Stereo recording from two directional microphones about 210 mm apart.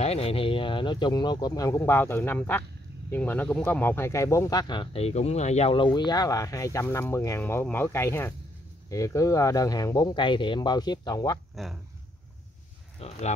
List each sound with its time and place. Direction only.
0.0 s speech: 30° left (ahead or behind)
11.5 s speech: centre (ahead or behind)
13.0 s speech: 30° left (ahead or behind)